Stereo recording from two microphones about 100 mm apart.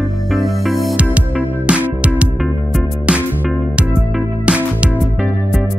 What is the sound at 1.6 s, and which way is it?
Music, 10° right (ahead or behind).